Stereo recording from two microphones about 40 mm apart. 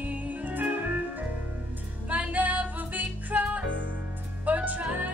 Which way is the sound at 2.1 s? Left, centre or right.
Right.